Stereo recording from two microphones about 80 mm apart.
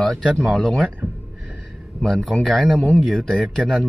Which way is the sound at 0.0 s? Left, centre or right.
Centre.